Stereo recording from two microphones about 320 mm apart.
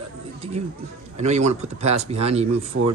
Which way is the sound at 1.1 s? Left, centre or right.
Right.